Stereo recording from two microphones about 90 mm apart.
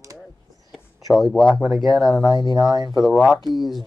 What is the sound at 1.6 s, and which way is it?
Speech, centre (ahead or behind).